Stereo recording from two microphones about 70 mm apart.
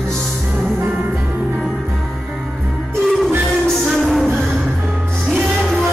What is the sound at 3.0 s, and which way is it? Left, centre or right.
Music, centre.